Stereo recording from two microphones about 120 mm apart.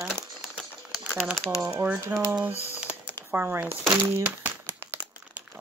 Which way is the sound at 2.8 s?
15° right (ahead or behind).